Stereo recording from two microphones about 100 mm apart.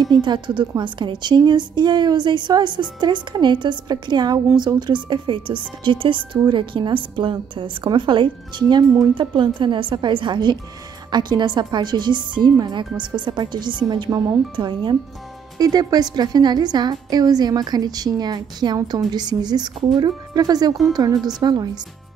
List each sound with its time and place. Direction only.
0.0 s a woman's voice: 50° right (ahead or behind)